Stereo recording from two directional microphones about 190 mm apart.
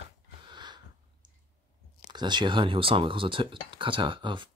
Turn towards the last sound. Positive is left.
turn(degrees=-25)  # may be behind; listen again after turning